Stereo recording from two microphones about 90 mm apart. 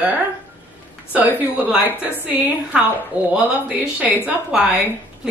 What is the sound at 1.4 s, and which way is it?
A woman's voice, 20° right (ahead or behind).